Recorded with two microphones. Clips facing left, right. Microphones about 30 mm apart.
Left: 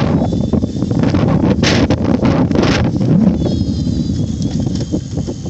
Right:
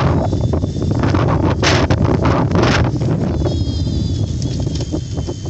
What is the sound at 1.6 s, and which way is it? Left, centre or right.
Wind noise, centre.